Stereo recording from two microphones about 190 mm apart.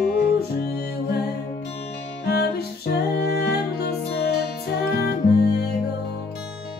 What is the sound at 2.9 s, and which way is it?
Music, 60° left (ahead or behind).